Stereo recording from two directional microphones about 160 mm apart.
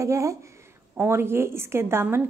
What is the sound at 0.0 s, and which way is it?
A woman's voice, 20° right (ahead or behind).